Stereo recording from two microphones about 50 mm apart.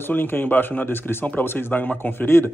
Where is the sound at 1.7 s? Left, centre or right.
Left.